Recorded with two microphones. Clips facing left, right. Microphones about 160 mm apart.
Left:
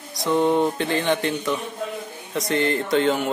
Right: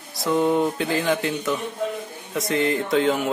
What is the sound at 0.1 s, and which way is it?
Speech, 5° right (ahead or behind).